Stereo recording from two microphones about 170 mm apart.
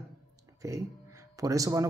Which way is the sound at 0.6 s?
20° right (ahead or behind).